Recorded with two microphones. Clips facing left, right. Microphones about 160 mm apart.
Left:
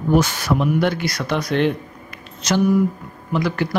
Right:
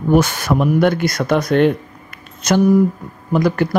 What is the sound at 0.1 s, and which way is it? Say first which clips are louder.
Speech: right 3 dB; 55° right (ahead or behind).